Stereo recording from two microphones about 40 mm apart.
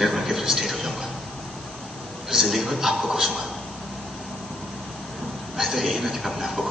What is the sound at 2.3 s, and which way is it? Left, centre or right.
A man's voice, centre.